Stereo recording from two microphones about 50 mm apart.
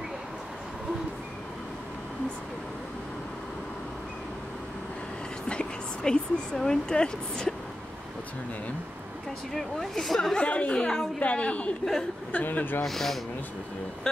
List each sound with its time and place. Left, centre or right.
5.5 s speech: centre
9.5 s speech: centre
10.3 s a woman's voice: left
11.1 s a woman's voice: left
11.8 s speech: centre
12.3 s speech: left
12.8 s speech: centre